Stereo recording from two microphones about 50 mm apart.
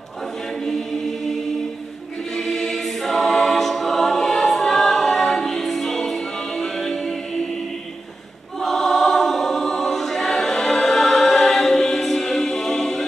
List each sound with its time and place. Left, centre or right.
2.3 s choir: centre
8.5 s choir: centre